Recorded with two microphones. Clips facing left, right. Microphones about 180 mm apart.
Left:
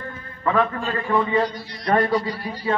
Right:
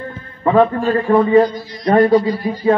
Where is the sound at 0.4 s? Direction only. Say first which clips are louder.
Right 8 dB; 30° right (ahead or behind).